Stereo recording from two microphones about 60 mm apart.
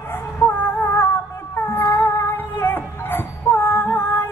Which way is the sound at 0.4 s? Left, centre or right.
Centre.